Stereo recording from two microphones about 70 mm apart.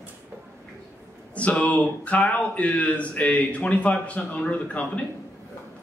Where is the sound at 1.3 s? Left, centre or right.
Centre.